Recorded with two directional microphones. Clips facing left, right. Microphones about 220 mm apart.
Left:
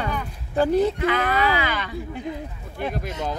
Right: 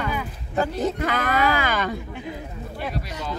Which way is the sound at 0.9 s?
45° right (ahead or behind).